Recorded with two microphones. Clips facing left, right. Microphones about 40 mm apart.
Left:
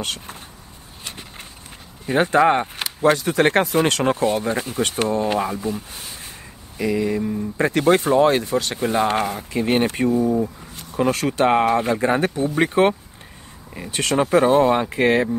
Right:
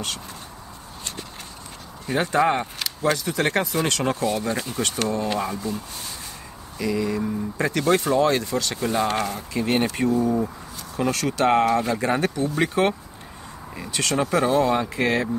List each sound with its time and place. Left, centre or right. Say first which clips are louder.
0.0 s speech: left 3 dB; left
2.0 s speech: left 4 dB; left
3.2 s speech: left 5 dB; left